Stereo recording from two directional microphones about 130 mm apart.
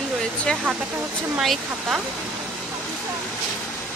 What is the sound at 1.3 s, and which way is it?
Speech, 5° right (ahead or behind).